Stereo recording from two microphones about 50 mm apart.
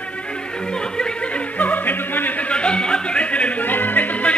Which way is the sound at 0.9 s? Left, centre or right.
Centre.